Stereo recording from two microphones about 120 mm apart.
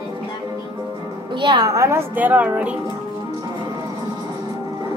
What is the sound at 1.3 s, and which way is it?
Speech, 40° right (ahead or behind).